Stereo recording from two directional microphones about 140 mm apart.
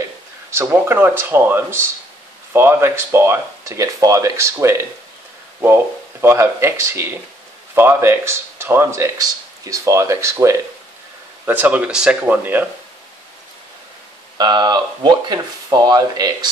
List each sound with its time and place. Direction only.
0.5 s speech: 20° right (ahead or behind)
6.2 s speech: 20° right (ahead or behind)
14.4 s speech: 30° right (ahead or behind)